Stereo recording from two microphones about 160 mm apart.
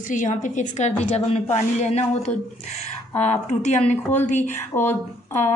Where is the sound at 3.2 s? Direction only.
45° left (ahead or behind).